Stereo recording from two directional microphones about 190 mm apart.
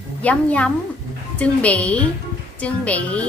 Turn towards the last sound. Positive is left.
turn(degrees=5)  # may be behind; listen again after turning